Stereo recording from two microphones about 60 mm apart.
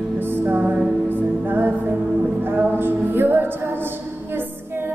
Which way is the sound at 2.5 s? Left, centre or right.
Right.